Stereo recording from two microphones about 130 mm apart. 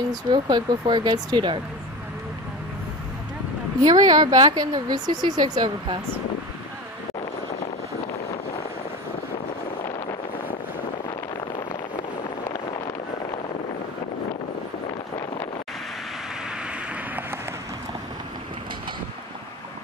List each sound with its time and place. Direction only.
0.1 s speech: 35° right (ahead or behind)
3.8 s speech: 30° right (ahead or behind)
16.9 s a sound: 15° right (ahead or behind)